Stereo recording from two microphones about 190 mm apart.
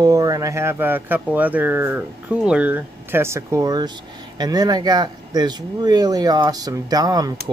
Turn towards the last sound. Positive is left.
turn(degrees=-20)  # may be behind; listen again after turning